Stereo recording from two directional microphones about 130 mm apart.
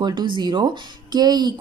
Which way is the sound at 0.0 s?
35° right (ahead or behind).